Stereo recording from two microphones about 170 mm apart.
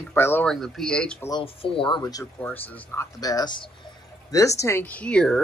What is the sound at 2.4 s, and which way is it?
Speech, 10° left (ahead or behind).